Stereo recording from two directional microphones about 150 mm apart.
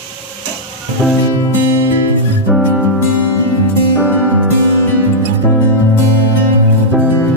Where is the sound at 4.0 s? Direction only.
10° right (ahead or behind).